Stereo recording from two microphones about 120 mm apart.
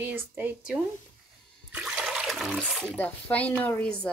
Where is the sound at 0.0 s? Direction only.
15° right (ahead or behind).